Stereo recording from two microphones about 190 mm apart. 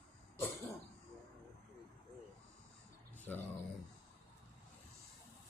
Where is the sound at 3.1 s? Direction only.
10° left (ahead or behind).